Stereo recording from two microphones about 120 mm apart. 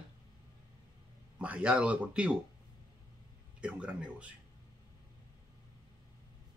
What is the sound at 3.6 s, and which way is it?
Speech, 10° right (ahead or behind).